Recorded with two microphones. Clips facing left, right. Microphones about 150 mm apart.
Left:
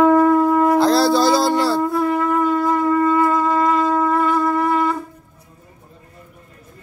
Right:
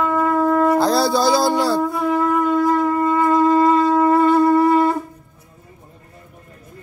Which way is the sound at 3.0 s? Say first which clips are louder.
Right 1 dB; 20° right (ahead or behind).